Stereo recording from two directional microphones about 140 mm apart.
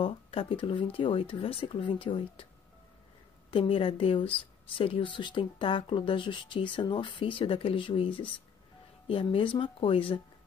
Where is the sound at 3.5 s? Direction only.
40° left (ahead or behind).